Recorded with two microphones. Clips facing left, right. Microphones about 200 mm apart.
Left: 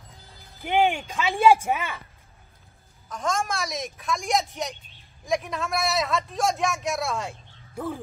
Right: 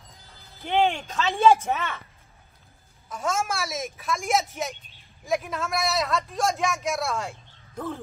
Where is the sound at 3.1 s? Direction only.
5° right (ahead or behind).